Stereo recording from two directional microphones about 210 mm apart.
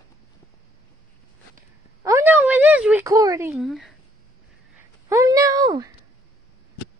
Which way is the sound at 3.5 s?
Centre (ahead or behind).